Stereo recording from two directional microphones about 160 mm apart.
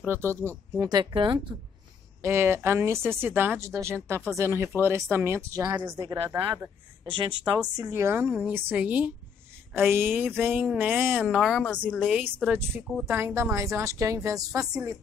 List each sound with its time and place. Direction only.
0.0 s speech: 15° right (ahead or behind); by 1.4 s 30° right (ahead or behind)
2.2 s speech: 15° right (ahead or behind)
7.1 s speech: 30° right (ahead or behind)
7.7 s speech: 20° right (ahead or behind)